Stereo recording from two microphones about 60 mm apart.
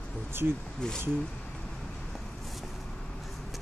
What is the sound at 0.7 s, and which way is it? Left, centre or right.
Speech, centre.